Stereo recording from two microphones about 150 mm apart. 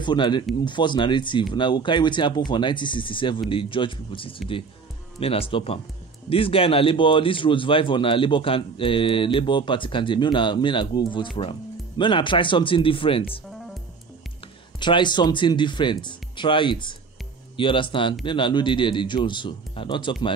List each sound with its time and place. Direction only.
0.0 s speech: 30° left (ahead or behind)
14.8 s speech: 30° left (ahead or behind)